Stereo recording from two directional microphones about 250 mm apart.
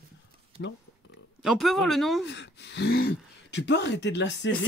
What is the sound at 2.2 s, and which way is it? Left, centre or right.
Speech, left.